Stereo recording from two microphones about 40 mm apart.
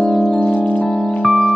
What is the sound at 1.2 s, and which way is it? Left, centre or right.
Music, centre.